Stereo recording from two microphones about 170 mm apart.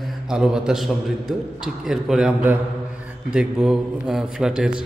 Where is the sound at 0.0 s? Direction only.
5° right (ahead or behind).